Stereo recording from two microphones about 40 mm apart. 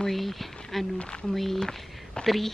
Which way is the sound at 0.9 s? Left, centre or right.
Left.